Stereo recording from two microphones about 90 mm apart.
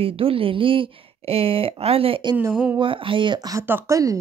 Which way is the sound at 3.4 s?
40° right (ahead or behind).